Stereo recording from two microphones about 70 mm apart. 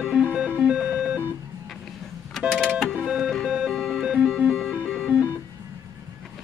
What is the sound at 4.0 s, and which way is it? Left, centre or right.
Music, centre.